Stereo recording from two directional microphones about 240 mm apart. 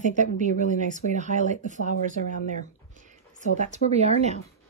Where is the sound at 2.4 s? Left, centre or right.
Right.